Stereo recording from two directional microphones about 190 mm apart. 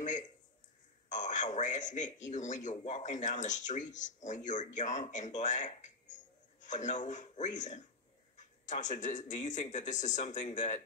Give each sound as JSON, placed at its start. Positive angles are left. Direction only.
{"t": 1.0, "sound": "a man's voice", "side_deg": 40}